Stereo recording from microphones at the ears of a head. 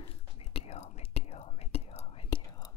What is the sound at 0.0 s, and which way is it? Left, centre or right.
Whispering, left.